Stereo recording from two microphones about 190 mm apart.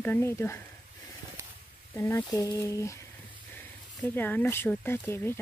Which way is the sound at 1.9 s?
15° left (ahead or behind).